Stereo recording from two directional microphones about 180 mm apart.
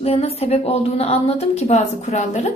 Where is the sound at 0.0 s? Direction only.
35° left (ahead or behind).